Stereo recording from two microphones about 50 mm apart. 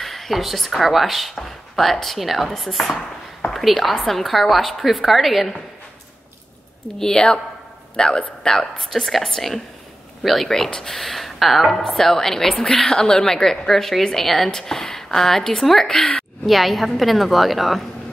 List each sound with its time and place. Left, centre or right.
0.0 s speech: centre
7.0 s a woman's voice: centre
15.9 s a woman's voice: centre
16.4 s speech: centre